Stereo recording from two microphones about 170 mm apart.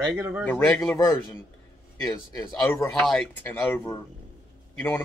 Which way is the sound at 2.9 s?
5° left (ahead or behind).